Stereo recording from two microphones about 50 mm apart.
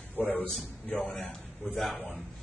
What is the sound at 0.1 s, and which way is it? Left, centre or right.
Speech, left.